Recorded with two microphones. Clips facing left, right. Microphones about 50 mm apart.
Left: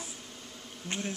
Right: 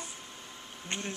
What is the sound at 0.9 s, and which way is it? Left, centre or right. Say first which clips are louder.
Bee: left 1 dB; centre.